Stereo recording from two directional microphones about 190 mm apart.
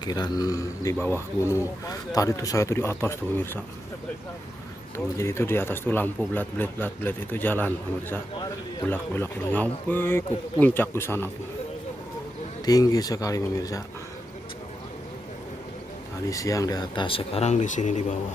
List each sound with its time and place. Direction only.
0.0 s a man's voice: 20° left (ahead or behind)
4.9 s a man's voice: 15° left (ahead or behind)
12.6 s speech: 20° left (ahead or behind)
16.3 s speech: 15° left (ahead or behind); by 18.0 s 40° left (ahead or behind)